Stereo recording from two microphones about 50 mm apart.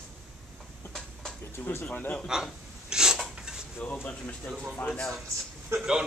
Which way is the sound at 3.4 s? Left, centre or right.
Centre.